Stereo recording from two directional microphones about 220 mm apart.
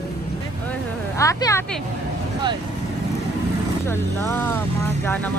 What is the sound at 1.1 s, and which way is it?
Speech, 15° left (ahead or behind).